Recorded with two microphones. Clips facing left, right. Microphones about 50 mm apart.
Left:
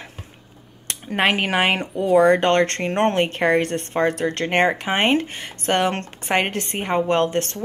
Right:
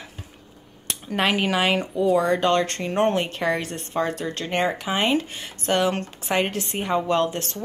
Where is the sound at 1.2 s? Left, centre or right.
Left.